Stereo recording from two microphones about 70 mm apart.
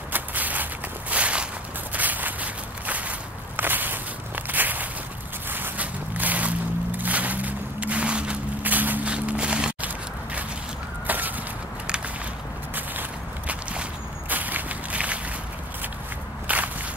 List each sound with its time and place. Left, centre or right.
0.1 s walk: right
11.1 s a sound: right
14.3 s walk: right
16.4 s walk: right